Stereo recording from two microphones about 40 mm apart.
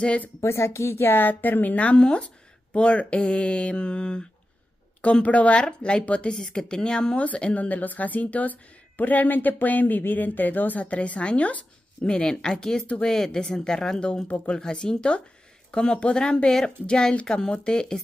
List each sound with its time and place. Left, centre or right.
0.5 s a woman's voice: left
5.2 s a woman's voice: left
6.3 s a woman's voice: centre; by 10.8 s left
10.8 s a woman's voice: left